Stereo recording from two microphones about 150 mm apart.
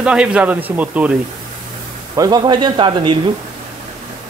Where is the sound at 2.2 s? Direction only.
25° right (ahead or behind).